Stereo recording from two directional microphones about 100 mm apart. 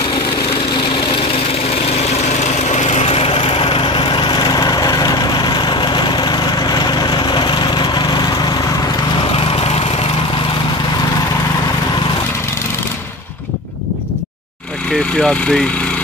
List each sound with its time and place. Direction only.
1.9 s lawn mower: 90° left
3.0 s lawn mower: 80° left; by 8.5 s 45° left (ahead or behind)
9.3 s lawn mower: 75° left (ahead or behind)
15.1 s speech: 10° left (ahead or behind)